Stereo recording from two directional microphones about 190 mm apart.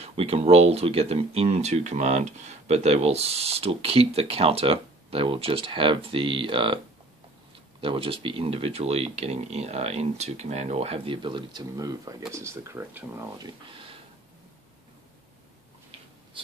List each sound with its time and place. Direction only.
0.0 s speech: 30° right (ahead or behind)
7.8 s speech: 30° right (ahead or behind)